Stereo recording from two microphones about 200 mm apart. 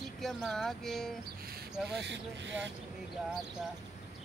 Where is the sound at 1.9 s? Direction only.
60° right (ahead or behind).